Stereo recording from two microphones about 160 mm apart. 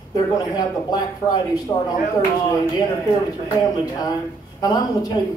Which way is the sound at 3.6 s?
25° left (ahead or behind).